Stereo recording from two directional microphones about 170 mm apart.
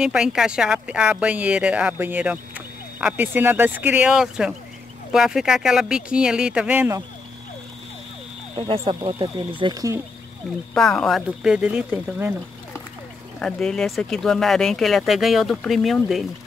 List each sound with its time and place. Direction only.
0.0 s speech: 5° right (ahead or behind)
8.5 s speech: 35° right (ahead or behind)
10.7 s speech: 5° left (ahead or behind)
13.4 s speech: 5° left (ahead or behind)